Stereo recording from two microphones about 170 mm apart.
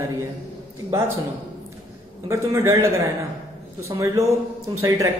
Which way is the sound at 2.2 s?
15° right (ahead or behind).